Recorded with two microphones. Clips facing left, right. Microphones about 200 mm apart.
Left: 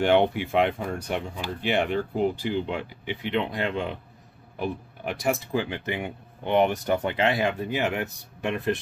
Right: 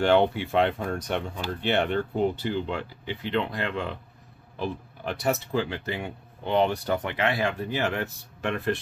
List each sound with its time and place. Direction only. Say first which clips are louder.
0.0 s speech: even; 15° left (ahead or behind)